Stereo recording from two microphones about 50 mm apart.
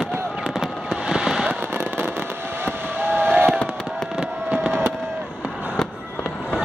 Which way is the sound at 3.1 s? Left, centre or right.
Right.